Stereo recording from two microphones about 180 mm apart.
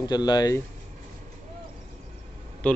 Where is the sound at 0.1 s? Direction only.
20° left (ahead or behind).